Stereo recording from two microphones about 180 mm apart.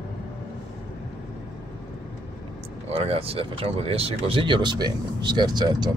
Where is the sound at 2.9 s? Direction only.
35° right (ahead or behind).